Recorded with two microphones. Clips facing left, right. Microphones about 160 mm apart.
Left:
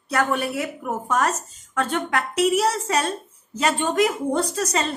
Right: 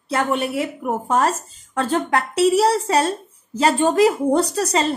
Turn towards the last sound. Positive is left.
turn(degrees=-30)  # may be behind; listen again after turning